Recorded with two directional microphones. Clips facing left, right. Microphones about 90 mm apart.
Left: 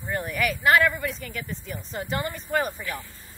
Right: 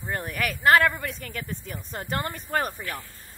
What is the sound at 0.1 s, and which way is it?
Speech, 45° right (ahead or behind).